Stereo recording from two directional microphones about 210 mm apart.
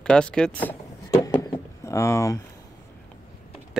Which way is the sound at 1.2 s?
20° left (ahead or behind).